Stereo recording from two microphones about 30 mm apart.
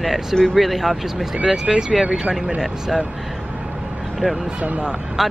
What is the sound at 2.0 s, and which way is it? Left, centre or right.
Speech, right.